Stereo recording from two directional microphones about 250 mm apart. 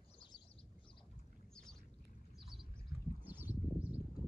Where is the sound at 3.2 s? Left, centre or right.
Centre.